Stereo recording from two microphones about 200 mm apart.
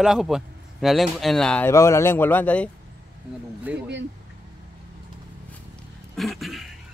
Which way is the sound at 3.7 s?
5° right (ahead or behind).